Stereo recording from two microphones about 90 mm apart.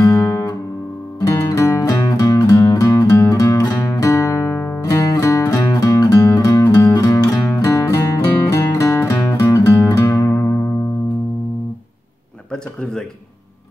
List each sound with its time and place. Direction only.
0.0 s guitar: 40° left (ahead or behind)
1.2 s music: 35° left (ahead or behind)
1.8 s music: 45° left (ahead or behind)